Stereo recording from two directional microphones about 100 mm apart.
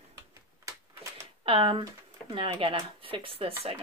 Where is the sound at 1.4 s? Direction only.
65° right (ahead or behind).